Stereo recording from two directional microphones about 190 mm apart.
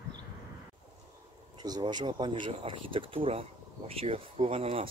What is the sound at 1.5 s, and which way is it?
Speech, 20° right (ahead or behind).